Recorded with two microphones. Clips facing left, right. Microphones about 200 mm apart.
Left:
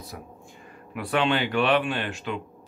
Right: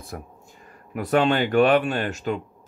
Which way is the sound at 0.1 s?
50° right (ahead or behind).